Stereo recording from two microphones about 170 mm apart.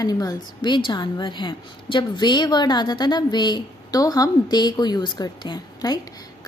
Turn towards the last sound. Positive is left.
turn(degrees=25)  # may be behind; listen again after turning